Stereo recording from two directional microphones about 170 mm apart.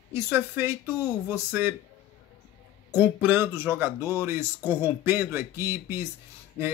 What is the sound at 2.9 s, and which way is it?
Speech, 10° right (ahead or behind).